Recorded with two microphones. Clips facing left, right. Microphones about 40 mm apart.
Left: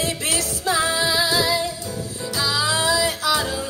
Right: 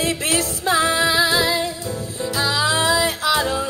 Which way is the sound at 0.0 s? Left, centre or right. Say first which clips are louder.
Right 3 dB; right.